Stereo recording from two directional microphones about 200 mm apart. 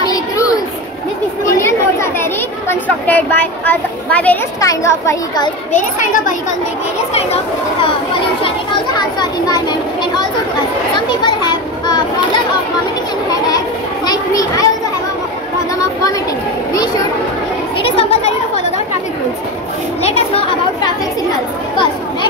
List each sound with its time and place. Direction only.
0.0 s a sound: 20° left (ahead or behind)
1.4 s chatter: 15° left (ahead or behind)
2.7 s speech: 10° left (ahead or behind)
5.7 s a child's voice: 40° left (ahead or behind)
8.4 s speech: 25° left (ahead or behind)
11.0 s children playing: 20° left (ahead or behind)
14.0 s a child's voice: 20° left (ahead or behind)
17.7 s a sound: 30° left (ahead or behind)
20.0 s speech: 30° left (ahead or behind)